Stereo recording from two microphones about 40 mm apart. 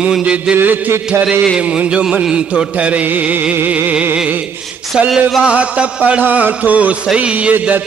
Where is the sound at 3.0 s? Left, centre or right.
Right.